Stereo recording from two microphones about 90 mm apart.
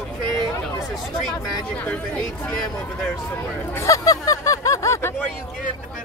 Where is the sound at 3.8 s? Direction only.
40° left (ahead or behind).